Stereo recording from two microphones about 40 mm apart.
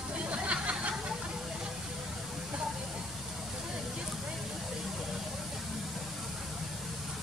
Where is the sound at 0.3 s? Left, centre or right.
Right.